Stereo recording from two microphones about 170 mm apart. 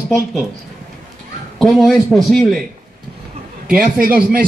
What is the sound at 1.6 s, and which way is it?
A man's voice, centre (ahead or behind).